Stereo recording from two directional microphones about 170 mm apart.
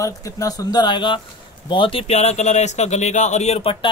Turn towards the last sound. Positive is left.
turn(degrees=35)  # may be behind; listen again after turning